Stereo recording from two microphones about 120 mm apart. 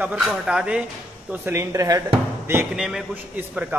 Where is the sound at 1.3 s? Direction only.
20° right (ahead or behind).